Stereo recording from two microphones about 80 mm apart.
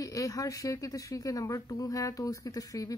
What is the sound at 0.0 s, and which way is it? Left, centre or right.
Speech, left.